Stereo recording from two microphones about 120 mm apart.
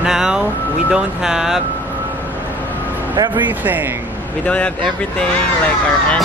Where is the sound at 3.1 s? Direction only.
40° right (ahead or behind).